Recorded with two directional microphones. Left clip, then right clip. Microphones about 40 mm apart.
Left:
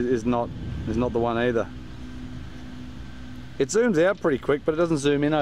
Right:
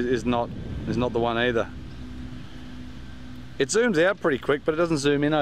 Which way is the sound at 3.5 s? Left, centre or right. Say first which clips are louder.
Even; left.